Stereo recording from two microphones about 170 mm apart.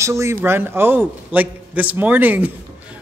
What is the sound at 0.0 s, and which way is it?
A man's voice, 15° right (ahead or behind).